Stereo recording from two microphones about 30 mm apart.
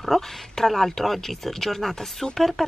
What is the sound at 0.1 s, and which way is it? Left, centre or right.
A woman's voice, centre.